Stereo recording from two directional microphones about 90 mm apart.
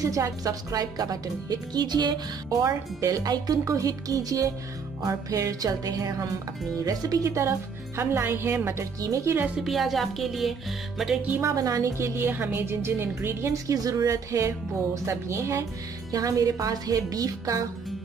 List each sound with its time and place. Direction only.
0.0 s speech: 35° right (ahead or behind); by 2.1 s 50° right (ahead or behind)
2.6 s a woman's voice: 40° right (ahead or behind)
7.3 s a woman's voice: 30° right (ahead or behind)
9.6 s speech: centre (ahead or behind)
11.4 s a woman's voice: 40° right (ahead or behind)